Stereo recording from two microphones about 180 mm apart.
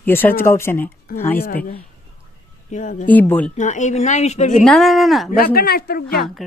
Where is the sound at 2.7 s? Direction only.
40° left (ahead or behind).